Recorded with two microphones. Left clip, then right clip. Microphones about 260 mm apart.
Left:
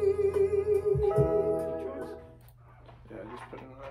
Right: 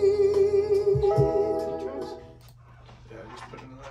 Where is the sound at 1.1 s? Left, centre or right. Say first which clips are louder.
Right 3 dB; right.